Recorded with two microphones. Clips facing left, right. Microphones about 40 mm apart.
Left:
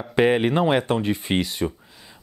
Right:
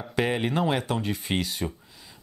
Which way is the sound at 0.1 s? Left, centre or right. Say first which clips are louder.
Left 7 dB; left.